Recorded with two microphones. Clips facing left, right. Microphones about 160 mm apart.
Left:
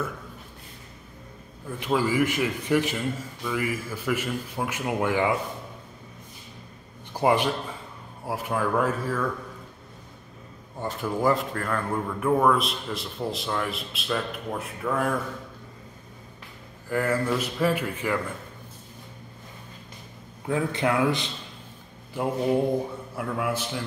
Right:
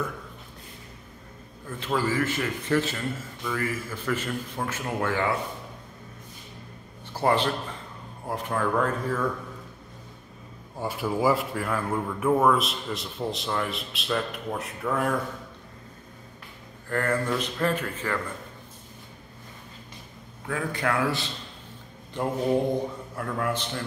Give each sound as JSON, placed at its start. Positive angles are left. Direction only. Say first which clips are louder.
{"t": 1.8, "sound": "a man's voice", "louder": "left 3 dB", "side_deg": 15}
{"t": 7.1, "sound": "a man's voice", "louder": "left 1 dB", "side_deg": 15}
{"t": 10.8, "sound": "speech", "louder": "right 1 dB", "side_deg": -10}
{"t": 16.9, "sound": "a man's voice", "louder": "left 1 dB", "side_deg": 10}
{"t": 20.4, "sound": "a man's voice", "louder": "left 3 dB", "side_deg": 25}
{"t": 22.1, "sound": "a man's voice", "louder": "left 1 dB", "side_deg": 5}